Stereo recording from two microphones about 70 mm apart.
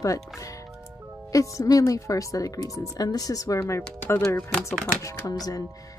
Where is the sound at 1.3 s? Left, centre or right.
Left.